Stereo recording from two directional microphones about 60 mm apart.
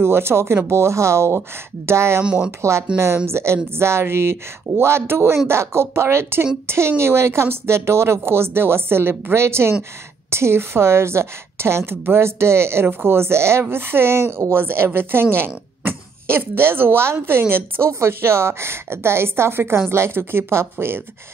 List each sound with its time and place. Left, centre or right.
0.0 s a woman's voice: right